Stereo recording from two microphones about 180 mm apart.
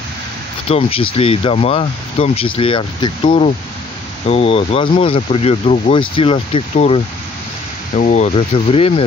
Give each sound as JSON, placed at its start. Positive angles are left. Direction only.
{"t": 0.7, "sound": "speech", "side_deg": 35}